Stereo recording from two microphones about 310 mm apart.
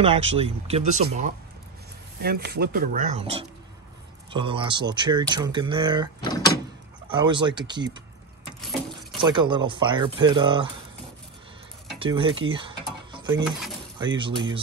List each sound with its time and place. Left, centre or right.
0.0 s speech: centre
2.2 s speech: right; by 6.0 s centre
6.2 s door: centre
7.1 s speech: centre
8.5 s water: centre
9.2 s speech: centre
12.0 s speech: centre
12.4 s mechanisms: centre
13.9 s speech: centre